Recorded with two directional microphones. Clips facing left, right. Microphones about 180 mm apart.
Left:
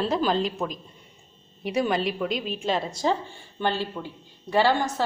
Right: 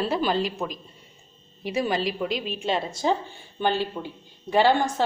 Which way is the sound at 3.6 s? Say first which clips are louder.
Right 2 dB; 15° right (ahead or behind).